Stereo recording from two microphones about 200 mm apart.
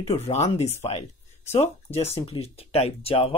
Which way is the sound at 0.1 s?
30° left (ahead or behind).